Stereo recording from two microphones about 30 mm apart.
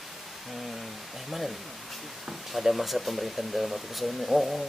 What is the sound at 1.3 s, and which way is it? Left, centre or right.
Speech, centre.